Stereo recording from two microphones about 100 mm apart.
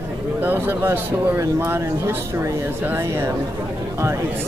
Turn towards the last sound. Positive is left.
turn(degrees=-25)  # may be behind; listen again after turning